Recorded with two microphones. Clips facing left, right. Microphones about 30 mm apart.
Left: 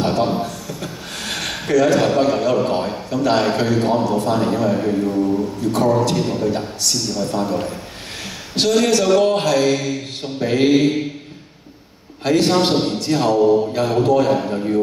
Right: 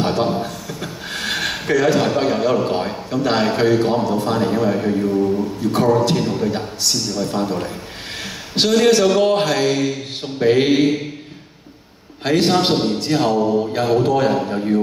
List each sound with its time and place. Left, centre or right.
0.0 s a sound: centre
2.0 s a man's voice: centre
5.6 s a man's voice: centre
12.2 s a man's voice: centre
13.4 s mantra: centre
14.0 s a man's voice: centre